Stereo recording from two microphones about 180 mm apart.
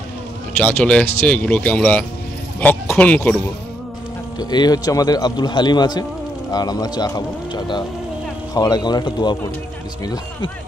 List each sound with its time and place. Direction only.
0.6 s speech: 10° left (ahead or behind)
4.4 s speech: 20° left (ahead or behind)